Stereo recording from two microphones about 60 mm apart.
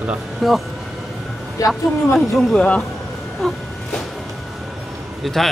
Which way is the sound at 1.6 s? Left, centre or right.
Left.